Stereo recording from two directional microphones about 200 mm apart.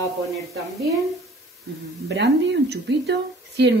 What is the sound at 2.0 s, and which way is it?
Speech, 60° right (ahead or behind).